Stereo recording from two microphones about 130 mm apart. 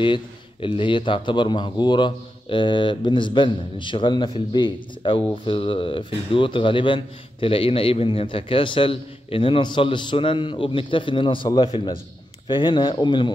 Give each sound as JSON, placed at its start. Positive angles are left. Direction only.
{"t": 0.0, "sound": "a man's voice", "side_deg": 40}